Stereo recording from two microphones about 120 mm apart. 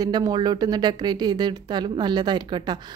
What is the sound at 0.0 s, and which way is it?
A woman's voice, 35° right (ahead or behind).